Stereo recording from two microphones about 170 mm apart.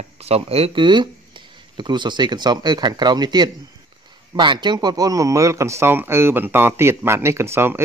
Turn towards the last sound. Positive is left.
turn(degrees=-15)  # may be behind; listen again after turning